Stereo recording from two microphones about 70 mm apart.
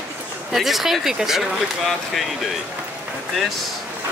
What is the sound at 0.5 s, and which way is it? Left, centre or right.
Speech, centre.